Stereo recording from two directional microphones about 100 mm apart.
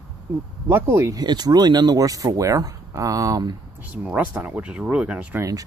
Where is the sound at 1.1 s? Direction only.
45° right (ahead or behind).